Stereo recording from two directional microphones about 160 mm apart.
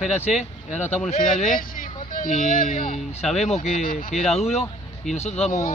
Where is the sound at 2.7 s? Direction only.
50° left (ahead or behind).